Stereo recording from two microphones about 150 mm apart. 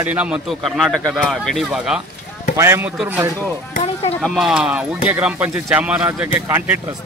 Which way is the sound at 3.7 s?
50° left (ahead or behind).